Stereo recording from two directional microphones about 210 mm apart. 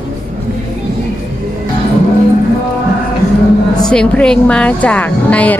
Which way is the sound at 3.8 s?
5° left (ahead or behind).